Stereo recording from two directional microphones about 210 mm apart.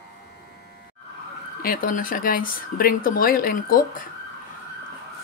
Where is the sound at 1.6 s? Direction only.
40° left (ahead or behind).